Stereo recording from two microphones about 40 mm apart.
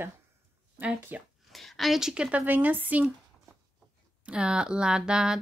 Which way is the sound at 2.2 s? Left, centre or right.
Right.